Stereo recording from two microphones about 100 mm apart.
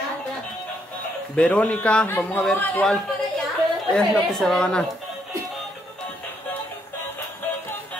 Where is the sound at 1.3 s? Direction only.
10° left (ahead or behind).